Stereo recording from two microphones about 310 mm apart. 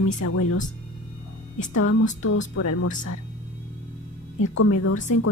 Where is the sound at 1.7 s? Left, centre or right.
Left.